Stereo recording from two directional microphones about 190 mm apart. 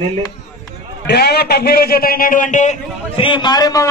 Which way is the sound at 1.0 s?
60° left (ahead or behind).